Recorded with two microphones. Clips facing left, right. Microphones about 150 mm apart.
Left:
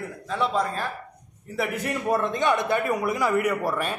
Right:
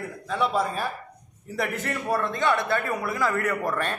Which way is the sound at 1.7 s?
15° left (ahead or behind).